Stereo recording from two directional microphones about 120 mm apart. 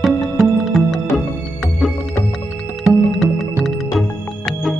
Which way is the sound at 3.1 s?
Centre (ahead or behind).